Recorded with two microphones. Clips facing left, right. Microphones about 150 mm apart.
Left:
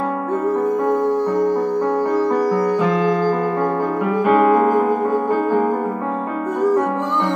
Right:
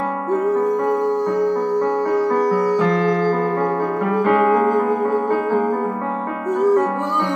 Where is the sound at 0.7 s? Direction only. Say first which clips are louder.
Left 1 dB; 5° left (ahead or behind).